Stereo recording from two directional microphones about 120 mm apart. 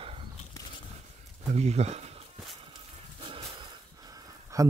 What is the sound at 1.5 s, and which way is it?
Speech, 65° right (ahead or behind).